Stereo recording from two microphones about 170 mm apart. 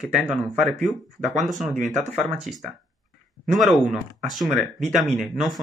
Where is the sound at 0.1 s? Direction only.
Centre (ahead or behind).